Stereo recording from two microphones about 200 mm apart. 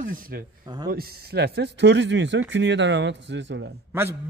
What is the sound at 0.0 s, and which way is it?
Speech, 45° right (ahead or behind).